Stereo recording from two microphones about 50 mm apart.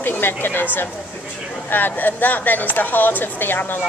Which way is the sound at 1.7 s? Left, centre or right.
Left.